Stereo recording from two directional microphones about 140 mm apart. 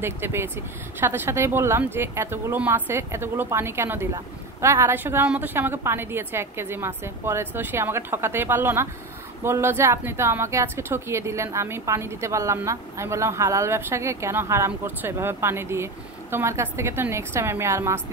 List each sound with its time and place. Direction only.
0.0 s speech: 15° right (ahead or behind)